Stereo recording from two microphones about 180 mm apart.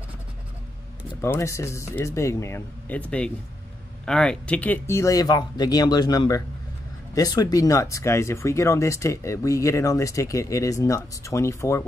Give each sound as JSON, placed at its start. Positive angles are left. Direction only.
{"t": 1.2, "sound": "speech", "side_deg": 15}